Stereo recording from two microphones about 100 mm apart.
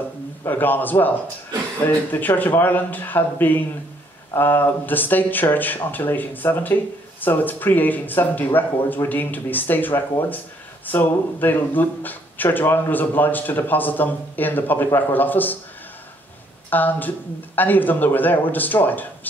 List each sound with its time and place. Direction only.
0.5 s speech: 20° left (ahead or behind)
16.7 s speech: 20° left (ahead or behind)